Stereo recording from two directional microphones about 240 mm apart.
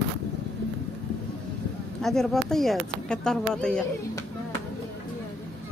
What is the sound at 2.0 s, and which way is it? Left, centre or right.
Speech, centre.